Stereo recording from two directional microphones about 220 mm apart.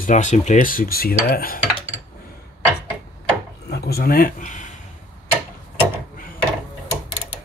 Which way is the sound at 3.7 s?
45° left (ahead or behind).